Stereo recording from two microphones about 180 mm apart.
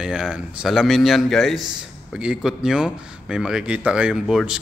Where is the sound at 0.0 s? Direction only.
5° right (ahead or behind).